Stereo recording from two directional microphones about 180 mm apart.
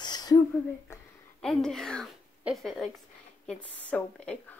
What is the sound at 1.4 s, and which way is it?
A woman's voice, centre (ahead or behind).